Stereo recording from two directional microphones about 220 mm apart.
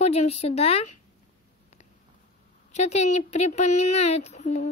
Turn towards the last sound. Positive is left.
turn(degrees=35)  # may be behind; listen again after turning